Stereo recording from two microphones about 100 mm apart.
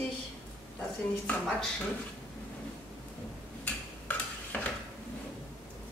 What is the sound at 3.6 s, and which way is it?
Dishes, 15° left (ahead or behind).